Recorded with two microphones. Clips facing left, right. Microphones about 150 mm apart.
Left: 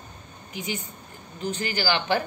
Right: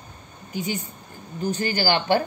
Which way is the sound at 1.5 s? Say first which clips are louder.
Right 4 dB; 40° right (ahead or behind).